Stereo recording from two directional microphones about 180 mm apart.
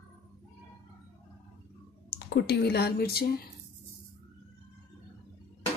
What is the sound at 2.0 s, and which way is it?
Speech, 60° left (ahead or behind).